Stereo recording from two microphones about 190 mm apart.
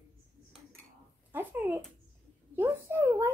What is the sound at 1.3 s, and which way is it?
A child's voice, 10° right (ahead or behind).